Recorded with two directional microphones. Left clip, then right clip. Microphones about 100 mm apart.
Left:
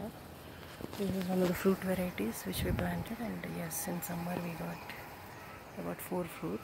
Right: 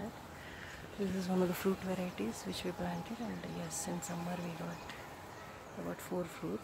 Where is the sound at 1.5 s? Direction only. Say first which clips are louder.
Left 4 dB; 30° left (ahead or behind).